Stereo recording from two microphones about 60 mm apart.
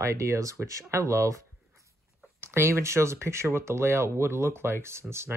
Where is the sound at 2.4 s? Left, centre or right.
Right.